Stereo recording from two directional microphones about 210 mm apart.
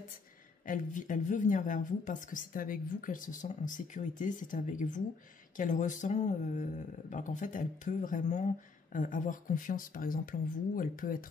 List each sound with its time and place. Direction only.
0.7 s speech: 40° left (ahead or behind)